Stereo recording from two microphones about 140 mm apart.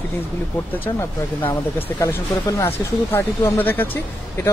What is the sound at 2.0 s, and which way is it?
Speech, 25° left (ahead or behind).